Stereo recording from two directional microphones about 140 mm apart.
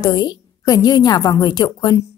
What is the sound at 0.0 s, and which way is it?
A woman's voice, 30° left (ahead or behind).